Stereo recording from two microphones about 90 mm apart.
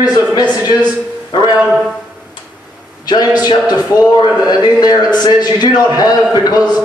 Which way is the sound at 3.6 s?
20° right (ahead or behind).